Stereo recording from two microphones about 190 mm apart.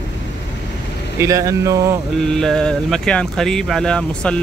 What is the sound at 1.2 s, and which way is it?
Speech, 15° right (ahead or behind).